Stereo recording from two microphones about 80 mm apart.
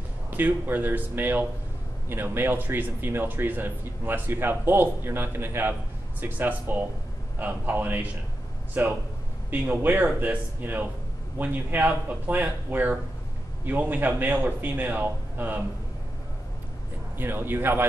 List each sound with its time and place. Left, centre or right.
0.3 s speech: right
17.2 s speech: right